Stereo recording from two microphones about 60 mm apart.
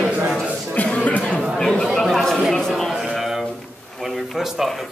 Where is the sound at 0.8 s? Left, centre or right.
Left.